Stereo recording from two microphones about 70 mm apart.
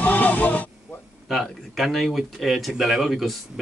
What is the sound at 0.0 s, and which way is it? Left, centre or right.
Music, left.